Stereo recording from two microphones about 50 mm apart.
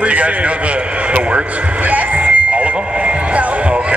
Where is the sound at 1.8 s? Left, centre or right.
Right.